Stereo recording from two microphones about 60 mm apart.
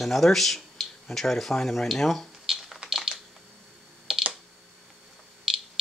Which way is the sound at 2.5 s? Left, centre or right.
Centre.